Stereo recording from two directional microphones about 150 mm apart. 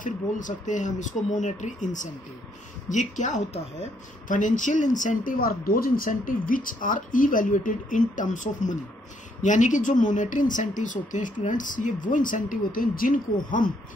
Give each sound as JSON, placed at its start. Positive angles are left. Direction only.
{"t": 0.0, "sound": "a woman's voice", "side_deg": 60}